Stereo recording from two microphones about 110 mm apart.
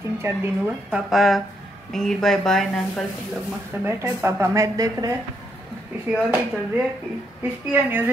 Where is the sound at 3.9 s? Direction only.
25° right (ahead or behind).